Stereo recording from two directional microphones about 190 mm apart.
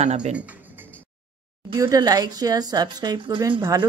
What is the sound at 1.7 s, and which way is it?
A woman's voice, 20° right (ahead or behind).